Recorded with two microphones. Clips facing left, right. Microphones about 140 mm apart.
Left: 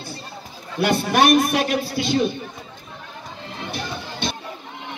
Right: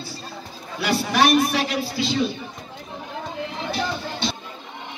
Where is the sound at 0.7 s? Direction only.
50° left (ahead or behind).